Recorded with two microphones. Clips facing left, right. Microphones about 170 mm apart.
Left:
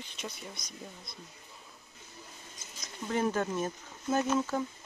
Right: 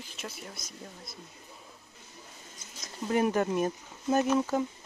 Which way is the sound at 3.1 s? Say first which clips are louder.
Right 4 dB; 15° right (ahead or behind).